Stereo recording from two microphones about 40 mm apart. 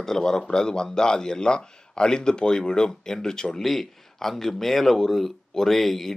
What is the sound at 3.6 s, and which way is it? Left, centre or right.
A man's voice, centre.